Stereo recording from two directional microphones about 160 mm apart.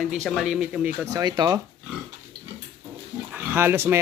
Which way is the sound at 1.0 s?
20° right (ahead or behind).